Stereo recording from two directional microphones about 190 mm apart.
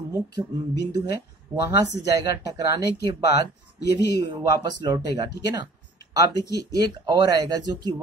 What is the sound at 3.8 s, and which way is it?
Speech, 60° left (ahead or behind).